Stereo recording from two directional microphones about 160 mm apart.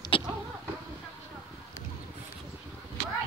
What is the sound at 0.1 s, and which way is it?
Vehicle, 35° left (ahead or behind).